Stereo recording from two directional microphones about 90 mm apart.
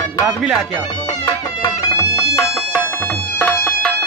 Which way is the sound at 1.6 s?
40° left (ahead or behind).